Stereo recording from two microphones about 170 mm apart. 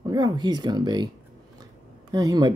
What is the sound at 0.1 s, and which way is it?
Speech, 25° right (ahead or behind).